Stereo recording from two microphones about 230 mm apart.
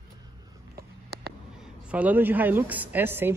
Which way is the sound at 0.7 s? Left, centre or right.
Right.